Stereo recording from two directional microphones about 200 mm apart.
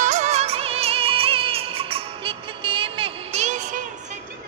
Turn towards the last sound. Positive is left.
turn(degrees=-40)  # may be behind; listen again after turning